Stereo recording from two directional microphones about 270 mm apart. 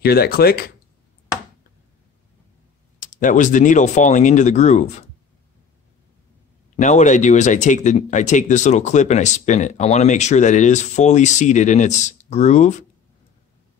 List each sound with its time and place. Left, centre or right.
0.0 s speech: left
3.0 s speech: left
6.8 s speech: left